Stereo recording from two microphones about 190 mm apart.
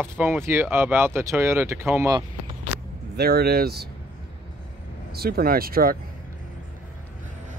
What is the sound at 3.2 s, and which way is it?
Speech, 55° right (ahead or behind).